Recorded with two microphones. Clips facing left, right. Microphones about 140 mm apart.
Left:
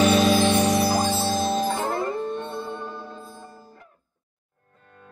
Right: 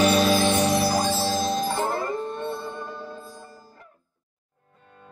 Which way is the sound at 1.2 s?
35° right (ahead or behind).